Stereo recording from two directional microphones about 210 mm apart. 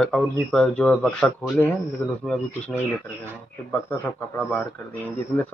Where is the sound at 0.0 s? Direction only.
5° left (ahead or behind).